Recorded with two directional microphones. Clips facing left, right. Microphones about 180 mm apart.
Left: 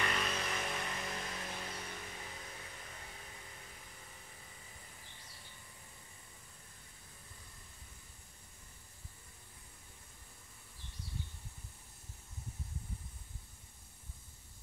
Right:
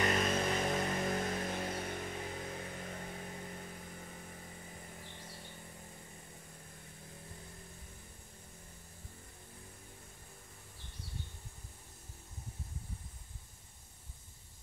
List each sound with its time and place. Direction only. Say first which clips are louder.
0.0 s vehicle: right 6 dB; 40° right (ahead or behind)